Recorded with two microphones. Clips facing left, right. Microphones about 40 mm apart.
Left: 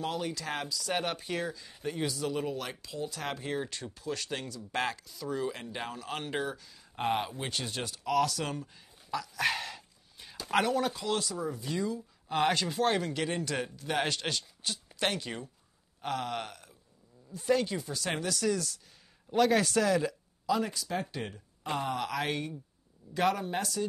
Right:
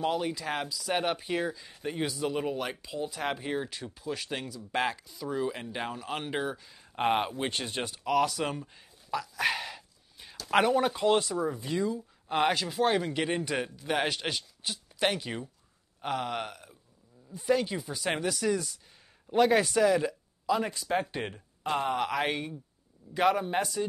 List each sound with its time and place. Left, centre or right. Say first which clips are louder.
0.0 s speech: right 4 dB; centre
6.6 s a sound: right 4 dB; right
7.1 s speech: right 4 dB; right; by 10.3 s centre
10.5 s speech: right 4 dB; right
12.5 s speech: right 2 dB; centre
13.1 s speech: right 3 dB; centre
20.7 s speech: right 5 dB; right